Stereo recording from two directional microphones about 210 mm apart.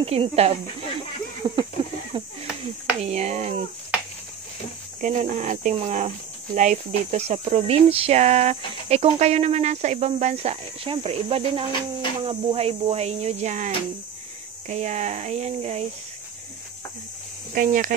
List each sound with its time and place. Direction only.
0.0 s speech: 30° right (ahead or behind)
1.4 s a sound: 20° right (ahead or behind)
3.0 s speech: 30° right (ahead or behind)
5.0 s speech: 35° right (ahead or behind)
14.7 s speech: 35° right (ahead or behind)
17.6 s speech: 40° right (ahead or behind)